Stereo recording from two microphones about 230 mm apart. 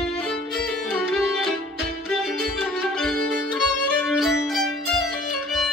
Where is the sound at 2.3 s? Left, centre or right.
Right.